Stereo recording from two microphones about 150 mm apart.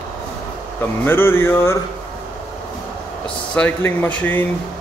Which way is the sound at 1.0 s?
15° left (ahead or behind).